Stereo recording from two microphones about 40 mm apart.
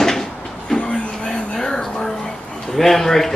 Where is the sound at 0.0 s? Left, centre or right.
Centre.